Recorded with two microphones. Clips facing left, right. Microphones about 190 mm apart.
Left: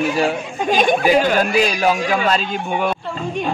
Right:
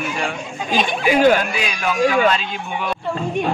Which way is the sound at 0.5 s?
45° left (ahead or behind).